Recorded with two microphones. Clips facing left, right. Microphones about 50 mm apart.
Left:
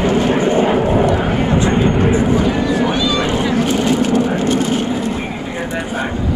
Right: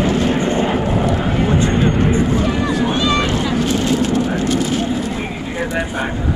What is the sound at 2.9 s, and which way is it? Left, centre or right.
Vehicle, right.